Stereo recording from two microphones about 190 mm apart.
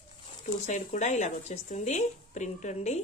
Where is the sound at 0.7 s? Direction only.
40° left (ahead or behind).